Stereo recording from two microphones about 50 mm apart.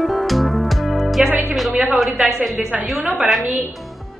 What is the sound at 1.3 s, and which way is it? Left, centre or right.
Speech, right.